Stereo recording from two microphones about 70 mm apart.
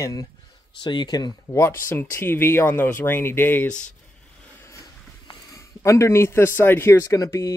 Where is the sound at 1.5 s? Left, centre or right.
Left.